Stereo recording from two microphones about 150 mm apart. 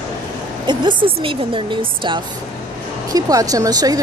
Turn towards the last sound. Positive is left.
turn(degrees=-25)  # may be behind; listen again after turning